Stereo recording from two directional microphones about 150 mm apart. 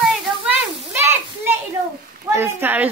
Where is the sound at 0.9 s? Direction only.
15° right (ahead or behind).